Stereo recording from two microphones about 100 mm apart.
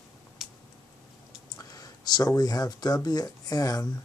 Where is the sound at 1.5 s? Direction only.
40° left (ahead or behind).